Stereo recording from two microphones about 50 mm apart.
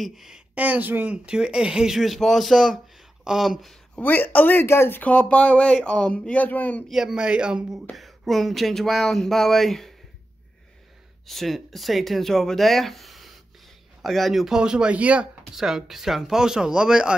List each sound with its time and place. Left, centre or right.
0.0 s speech: centre
0.6 s speech: right
1.1 s speech: centre
2.0 s speech: centre
4.0 s speech: left
4.6 s speech: left
5.0 s speech: left
6.9 s speech: centre
7.2 s speech: centre
7.9 s speech: centre
11.2 s speech: centre
14.4 s speech: centre
15.5 s speech: centre